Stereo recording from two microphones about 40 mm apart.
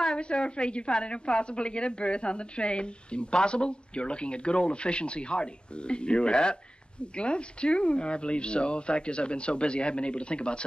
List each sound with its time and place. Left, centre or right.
0.0 s a woman's voice: left